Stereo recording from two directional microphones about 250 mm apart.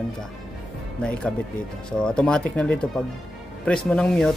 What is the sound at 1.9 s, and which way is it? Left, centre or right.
Speech, centre.